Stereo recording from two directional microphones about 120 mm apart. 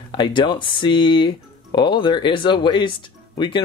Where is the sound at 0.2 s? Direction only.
40° left (ahead or behind).